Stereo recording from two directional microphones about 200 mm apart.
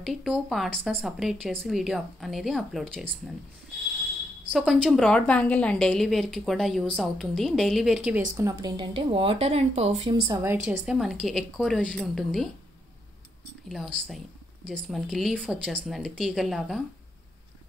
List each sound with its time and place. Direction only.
0.0 s speech: centre (ahead or behind)
4.5 s speech: 5° right (ahead or behind)
8.4 s speech: 15° right (ahead or behind)
10.2 s a woman's voice: 15° right (ahead or behind)
10.7 s speech: 5° right (ahead or behind)
14.9 s speech: centre (ahead or behind)